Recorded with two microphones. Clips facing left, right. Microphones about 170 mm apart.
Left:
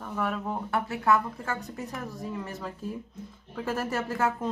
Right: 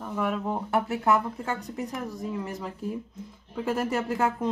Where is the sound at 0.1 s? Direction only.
15° right (ahead or behind).